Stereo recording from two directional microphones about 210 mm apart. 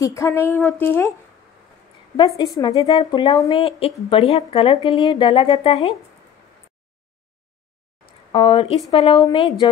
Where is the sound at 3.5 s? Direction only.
30° left (ahead or behind).